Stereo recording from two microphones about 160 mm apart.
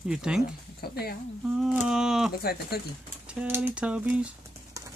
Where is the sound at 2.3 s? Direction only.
75° left (ahead or behind).